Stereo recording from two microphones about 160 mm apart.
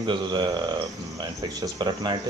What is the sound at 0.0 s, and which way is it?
Speech, 30° right (ahead or behind).